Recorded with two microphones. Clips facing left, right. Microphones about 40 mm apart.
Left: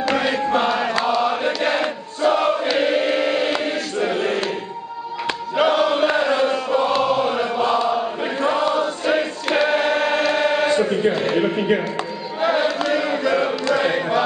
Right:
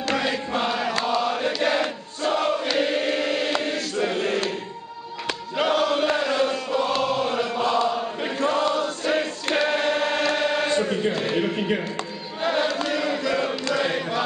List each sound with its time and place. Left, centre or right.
0.1 s chant: left
5.6 s chant: centre